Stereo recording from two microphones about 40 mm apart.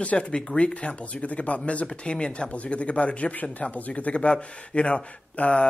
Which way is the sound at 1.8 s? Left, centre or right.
Left.